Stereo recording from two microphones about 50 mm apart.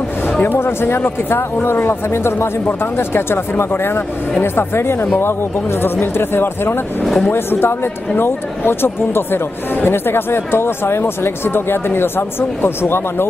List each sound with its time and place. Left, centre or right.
0.6 s speech: left
7.0 s speech: centre
7.3 s speech: left